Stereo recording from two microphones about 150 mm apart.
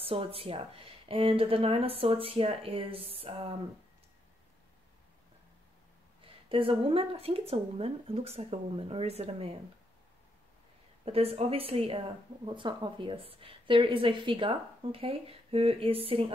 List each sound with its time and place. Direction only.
0.0 s a woman's voice: 40° right (ahead or behind)
6.2 s a woman's voice: 35° right (ahead or behind)
11.1 s a woman's voice: 40° right (ahead or behind)